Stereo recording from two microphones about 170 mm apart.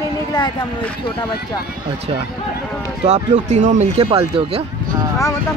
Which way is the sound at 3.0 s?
40° right (ahead or behind).